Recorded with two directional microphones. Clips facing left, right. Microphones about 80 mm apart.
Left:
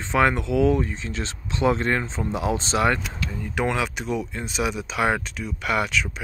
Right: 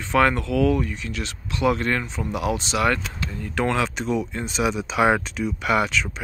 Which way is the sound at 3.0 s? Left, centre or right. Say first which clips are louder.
Even; centre.